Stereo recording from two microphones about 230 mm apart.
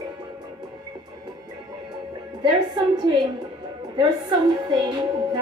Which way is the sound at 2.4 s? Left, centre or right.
Centre.